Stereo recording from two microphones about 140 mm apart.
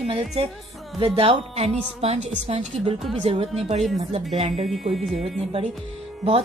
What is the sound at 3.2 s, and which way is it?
Speech, 45° right (ahead or behind).